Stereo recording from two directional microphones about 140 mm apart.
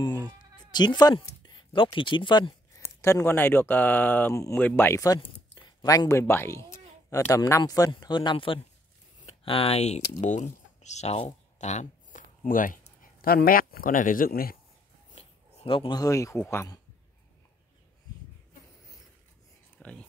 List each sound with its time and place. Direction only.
0.7 s speech: 30° left (ahead or behind)
2.8 s speech: 20° left (ahead or behind); by 12.7 s 75° left (ahead or behind)
13.0 s speech: 90° left
15.1 s a sound: 40° left (ahead or behind)
16.0 s speech: 25° left (ahead or behind)
19.8 s speech: 10° left (ahead or behind)